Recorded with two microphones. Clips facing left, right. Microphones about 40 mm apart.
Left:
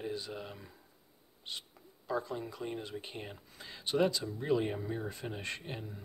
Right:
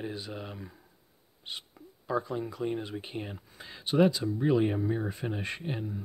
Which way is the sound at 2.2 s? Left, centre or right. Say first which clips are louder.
Right 6 dB; centre.